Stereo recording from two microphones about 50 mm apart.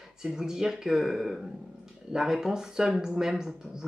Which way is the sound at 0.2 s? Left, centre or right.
Centre.